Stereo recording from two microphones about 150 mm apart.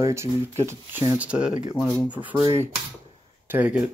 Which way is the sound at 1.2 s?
5° right (ahead or behind).